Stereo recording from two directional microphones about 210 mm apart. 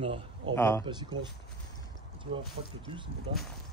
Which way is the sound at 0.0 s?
25° right (ahead or behind).